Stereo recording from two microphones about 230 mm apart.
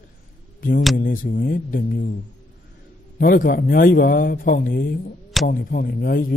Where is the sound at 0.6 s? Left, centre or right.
Left.